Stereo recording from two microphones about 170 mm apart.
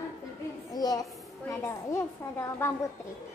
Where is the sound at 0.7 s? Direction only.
20° left (ahead or behind).